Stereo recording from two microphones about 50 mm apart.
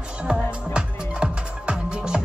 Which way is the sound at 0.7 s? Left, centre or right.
Centre.